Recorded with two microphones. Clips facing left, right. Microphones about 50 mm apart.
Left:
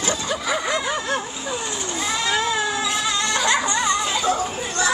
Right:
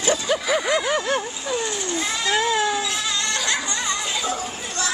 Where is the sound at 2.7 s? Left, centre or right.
Centre.